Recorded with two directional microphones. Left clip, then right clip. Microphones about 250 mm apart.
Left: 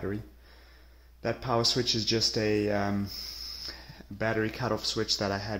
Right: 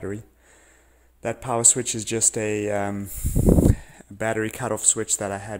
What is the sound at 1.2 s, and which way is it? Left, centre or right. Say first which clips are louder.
Speech: right 4 dB; right.